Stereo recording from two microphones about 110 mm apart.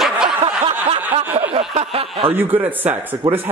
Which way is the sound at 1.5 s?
65° right (ahead or behind).